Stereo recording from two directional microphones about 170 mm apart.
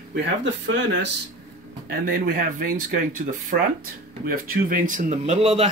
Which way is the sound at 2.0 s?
60° right (ahead or behind).